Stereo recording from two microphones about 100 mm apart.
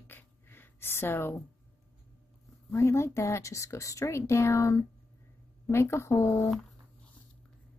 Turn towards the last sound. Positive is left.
turn(degrees=30)  # may be behind; listen again after turning